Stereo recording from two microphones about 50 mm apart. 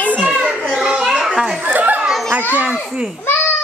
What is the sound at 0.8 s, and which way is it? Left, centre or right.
Children playing, centre.